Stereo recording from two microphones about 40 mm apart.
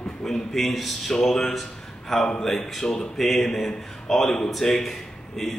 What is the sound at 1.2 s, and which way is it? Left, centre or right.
Speech, centre.